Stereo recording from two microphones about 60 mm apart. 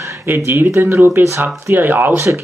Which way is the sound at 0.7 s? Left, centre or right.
Right.